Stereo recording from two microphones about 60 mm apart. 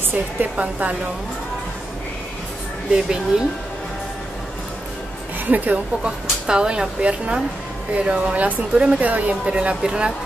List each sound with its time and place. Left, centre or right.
0.0 s speech: right
2.9 s speech: centre
5.5 s speech: right
6.4 s speech: centre